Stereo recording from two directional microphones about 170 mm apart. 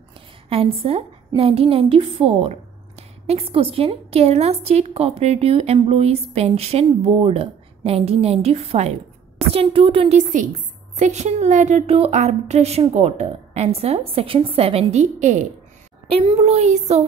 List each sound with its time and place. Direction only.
0.5 s a woman's voice: 35° right (ahead or behind)